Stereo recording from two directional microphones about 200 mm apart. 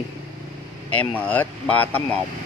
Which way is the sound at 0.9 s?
5° left (ahead or behind).